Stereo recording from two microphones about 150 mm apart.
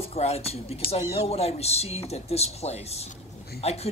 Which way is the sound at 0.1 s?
45° left (ahead or behind).